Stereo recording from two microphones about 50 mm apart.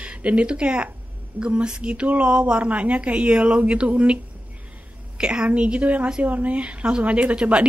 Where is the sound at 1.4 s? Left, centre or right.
Right.